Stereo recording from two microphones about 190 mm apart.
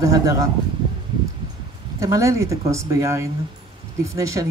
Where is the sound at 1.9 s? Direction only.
15° right (ahead or behind).